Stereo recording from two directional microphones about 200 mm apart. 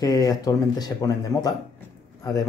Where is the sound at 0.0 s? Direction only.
20° left (ahead or behind).